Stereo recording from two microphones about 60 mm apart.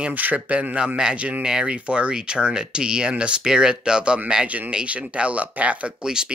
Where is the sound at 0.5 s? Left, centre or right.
Centre.